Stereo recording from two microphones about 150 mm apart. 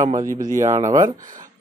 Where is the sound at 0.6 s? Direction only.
20° right (ahead or behind).